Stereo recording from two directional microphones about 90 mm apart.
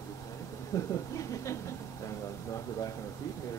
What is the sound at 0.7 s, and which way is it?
Speech, 35° left (ahead or behind).